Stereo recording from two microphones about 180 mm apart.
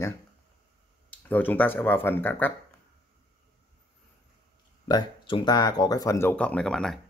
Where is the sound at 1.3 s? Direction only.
10° left (ahead or behind).